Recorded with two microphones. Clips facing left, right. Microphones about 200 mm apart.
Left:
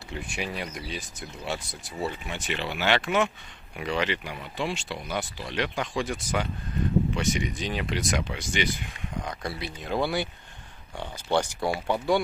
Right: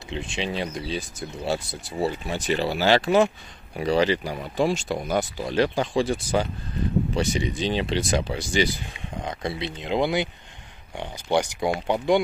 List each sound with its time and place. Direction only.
0.1 s speech: 25° right (ahead or behind)
9.2 s speech: 25° right (ahead or behind)